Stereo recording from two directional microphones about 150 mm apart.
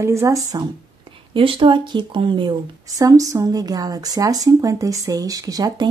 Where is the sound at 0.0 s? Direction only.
20° right (ahead or behind).